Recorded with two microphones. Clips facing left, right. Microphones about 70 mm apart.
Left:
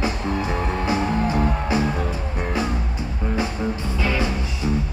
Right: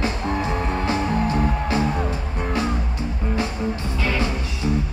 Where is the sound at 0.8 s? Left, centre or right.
Centre.